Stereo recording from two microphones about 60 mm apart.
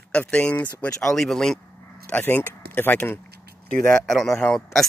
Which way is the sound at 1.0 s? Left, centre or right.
Centre.